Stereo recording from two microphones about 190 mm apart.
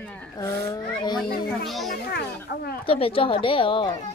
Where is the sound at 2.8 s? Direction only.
30° left (ahead or behind).